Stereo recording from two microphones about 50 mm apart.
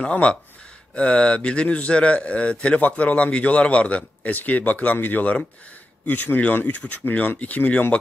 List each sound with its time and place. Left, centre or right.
0.0 s a man's voice: left